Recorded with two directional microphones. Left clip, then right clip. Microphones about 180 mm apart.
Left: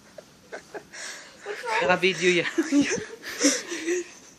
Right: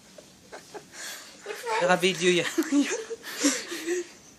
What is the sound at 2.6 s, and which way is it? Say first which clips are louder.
Speech: left 2 dB; 10° left (ahead or behind).